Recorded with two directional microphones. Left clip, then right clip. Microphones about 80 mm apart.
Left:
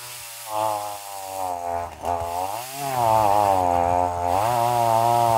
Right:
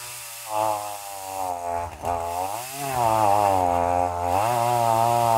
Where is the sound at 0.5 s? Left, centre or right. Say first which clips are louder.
Even; left.